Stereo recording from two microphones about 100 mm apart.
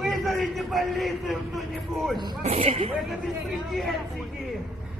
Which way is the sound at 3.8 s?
Centre (ahead or behind).